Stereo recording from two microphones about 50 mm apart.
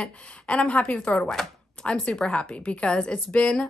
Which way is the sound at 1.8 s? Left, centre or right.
Left.